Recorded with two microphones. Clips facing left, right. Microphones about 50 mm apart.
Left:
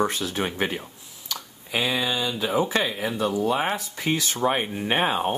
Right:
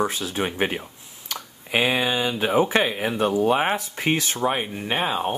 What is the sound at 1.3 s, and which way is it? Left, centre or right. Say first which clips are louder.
Speech: right 4 dB; right.